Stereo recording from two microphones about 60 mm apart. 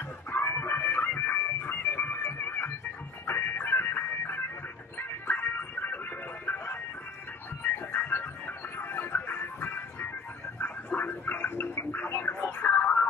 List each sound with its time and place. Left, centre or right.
0.3 s music: left
10.6 s a sound: left
12.1 s music: left